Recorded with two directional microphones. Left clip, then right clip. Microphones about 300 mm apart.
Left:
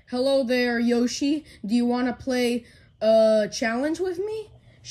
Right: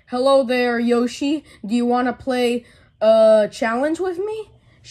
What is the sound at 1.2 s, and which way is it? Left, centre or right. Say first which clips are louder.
Speech: right 3 dB; right.